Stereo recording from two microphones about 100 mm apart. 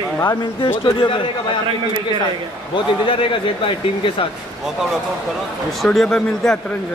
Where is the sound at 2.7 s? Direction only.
60° left (ahead or behind).